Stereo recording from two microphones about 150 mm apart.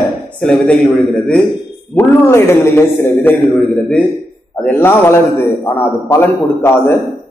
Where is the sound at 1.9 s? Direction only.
15° left (ahead or behind).